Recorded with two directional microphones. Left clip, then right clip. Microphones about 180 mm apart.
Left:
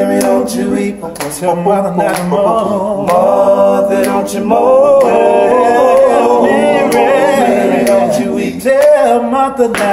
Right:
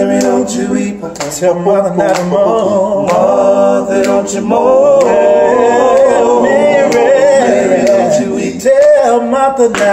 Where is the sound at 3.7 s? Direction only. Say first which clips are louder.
Even; 35° left (ahead or behind).